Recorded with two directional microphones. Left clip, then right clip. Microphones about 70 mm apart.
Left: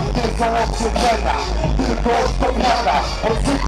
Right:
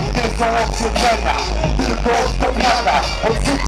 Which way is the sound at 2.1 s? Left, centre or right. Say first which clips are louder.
Even; right.